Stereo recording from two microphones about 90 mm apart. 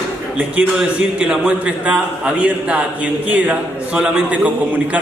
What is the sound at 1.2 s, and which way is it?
A man's voice, 15° right (ahead or behind).